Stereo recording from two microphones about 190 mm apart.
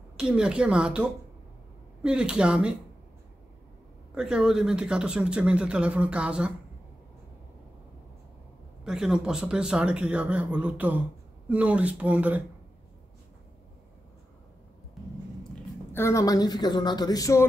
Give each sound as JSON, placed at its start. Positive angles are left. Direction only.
{"t": 0.2, "sound": "speech", "side_deg": -5}
{"t": 4.1, "sound": "speech", "side_deg": -5}
{"t": 8.8, "sound": "speech", "side_deg": -5}
{"t": 15.9, "sound": "speech", "side_deg": 15}